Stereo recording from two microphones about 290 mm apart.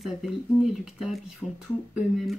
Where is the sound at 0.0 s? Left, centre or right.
Centre.